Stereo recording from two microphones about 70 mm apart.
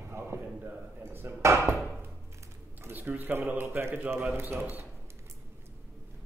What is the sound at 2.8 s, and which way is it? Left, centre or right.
Speech, right.